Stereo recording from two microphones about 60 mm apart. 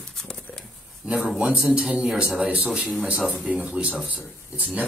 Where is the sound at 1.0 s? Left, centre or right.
Centre.